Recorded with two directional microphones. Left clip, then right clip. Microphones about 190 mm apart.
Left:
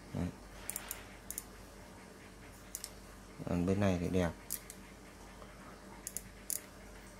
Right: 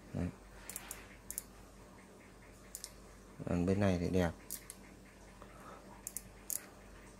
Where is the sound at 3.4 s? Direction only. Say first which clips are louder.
Even; 10° right (ahead or behind).